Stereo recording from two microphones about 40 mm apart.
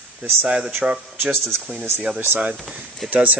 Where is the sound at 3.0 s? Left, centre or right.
Centre.